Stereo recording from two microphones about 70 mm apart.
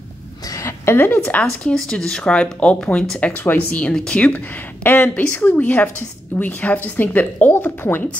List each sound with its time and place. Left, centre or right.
0.5 s a sound: left
0.9 s speech: left
1.4 s speech: centre
4.8 s speech: left